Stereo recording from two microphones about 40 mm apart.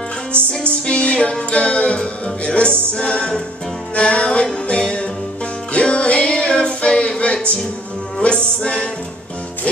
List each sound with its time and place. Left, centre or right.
0.3 s music: left
5.7 s music: left
8.2 s music: left